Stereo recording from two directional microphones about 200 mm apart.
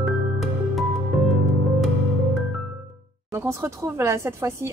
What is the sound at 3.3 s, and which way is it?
Speech, 15° right (ahead or behind).